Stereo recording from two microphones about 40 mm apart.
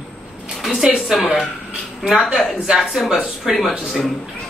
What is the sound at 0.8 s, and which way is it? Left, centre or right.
Speech, centre.